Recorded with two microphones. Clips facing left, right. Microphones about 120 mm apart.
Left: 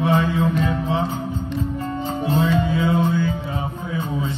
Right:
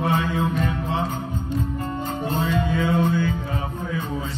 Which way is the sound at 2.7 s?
45° right (ahead or behind).